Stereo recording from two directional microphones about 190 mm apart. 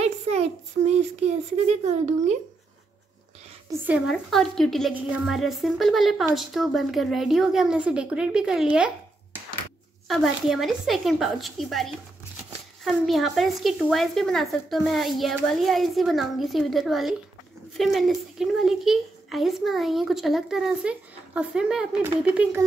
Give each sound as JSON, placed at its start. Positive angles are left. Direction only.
{"t": 0.0, "sound": "child singing", "side_deg": -35}
{"t": 3.8, "sound": "a woman's voice", "side_deg": -5}
{"t": 8.7, "sound": "a sound", "side_deg": -5}
{"t": 10.0, "sound": "a woman's voice", "side_deg": 0}